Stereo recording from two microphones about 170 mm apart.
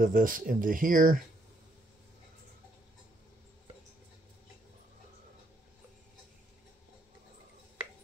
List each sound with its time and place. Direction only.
0.0 s speech: 55° right (ahead or behind)